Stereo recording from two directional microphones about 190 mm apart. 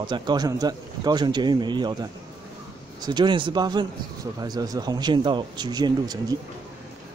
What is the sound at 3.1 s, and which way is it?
Speech, 25° right (ahead or behind).